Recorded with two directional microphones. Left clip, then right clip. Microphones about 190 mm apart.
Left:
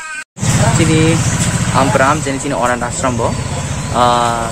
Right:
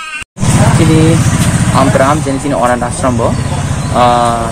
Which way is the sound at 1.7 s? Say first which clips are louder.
Right 2 dB; 25° left (ahead or behind).